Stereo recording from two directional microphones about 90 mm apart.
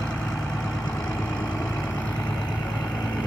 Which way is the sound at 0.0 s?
15° left (ahead or behind).